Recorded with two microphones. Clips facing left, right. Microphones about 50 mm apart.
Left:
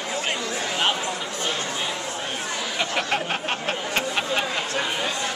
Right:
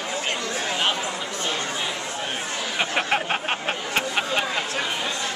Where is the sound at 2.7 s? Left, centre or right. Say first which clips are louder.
Right 2 dB; centre.